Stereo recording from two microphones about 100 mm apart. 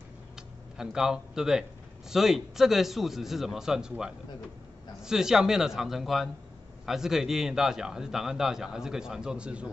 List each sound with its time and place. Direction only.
0.4 s a man's voice: 5° right (ahead or behind)